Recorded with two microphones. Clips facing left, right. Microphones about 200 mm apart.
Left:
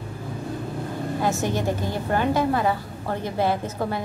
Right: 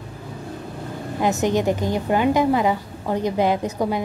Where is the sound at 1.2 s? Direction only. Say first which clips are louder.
Right 6 dB; 20° right (ahead or behind).